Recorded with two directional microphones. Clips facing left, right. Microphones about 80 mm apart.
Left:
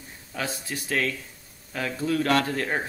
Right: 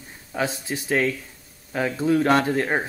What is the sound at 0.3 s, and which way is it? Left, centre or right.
Speech, right.